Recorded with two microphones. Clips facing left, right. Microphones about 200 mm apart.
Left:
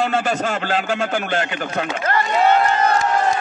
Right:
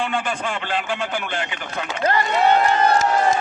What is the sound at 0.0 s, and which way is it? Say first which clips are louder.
Speech: left 4 dB; 40° left (ahead or behind).